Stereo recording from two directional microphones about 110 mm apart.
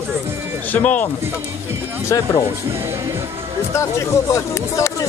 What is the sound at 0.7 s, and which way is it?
Speech, 15° left (ahead or behind).